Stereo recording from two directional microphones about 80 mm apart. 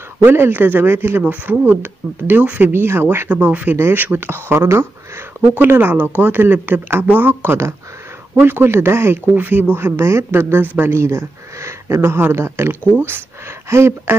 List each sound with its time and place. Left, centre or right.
0.2 s speech: right
2.7 s speech: right
3.7 s speech: right